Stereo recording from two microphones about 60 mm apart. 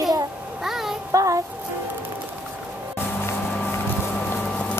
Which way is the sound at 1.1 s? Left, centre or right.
Right.